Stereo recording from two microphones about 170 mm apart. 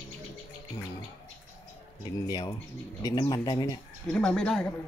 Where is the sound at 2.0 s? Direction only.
25° left (ahead or behind).